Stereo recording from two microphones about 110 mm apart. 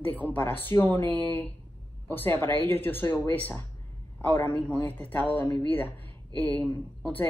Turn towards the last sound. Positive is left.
turn(degrees=15)  # may be behind; listen again after turning